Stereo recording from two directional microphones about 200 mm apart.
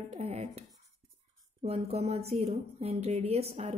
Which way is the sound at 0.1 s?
35° right (ahead or behind).